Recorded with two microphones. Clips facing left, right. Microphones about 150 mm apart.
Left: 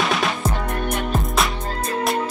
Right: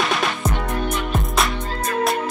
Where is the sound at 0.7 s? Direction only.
50° left (ahead or behind).